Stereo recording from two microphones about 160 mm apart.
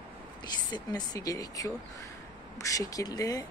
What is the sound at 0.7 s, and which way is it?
Speech, 25° left (ahead or behind).